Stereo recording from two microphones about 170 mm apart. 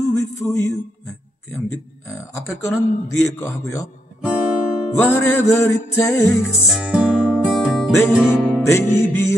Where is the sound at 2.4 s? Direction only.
15° left (ahead or behind).